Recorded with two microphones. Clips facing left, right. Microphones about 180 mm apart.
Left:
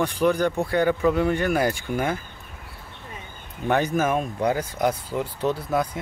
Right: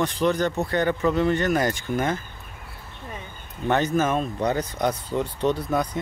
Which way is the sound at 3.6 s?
10° left (ahead or behind).